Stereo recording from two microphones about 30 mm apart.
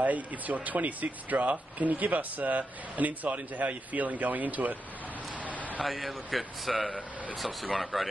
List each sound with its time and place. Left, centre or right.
0.0 s speech: right
5.9 s a man's voice: centre